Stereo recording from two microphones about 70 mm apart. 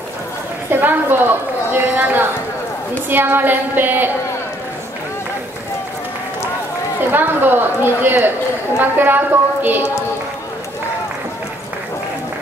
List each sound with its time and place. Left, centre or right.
0.7 s a woman's voice: right
7.0 s a woman's voice: right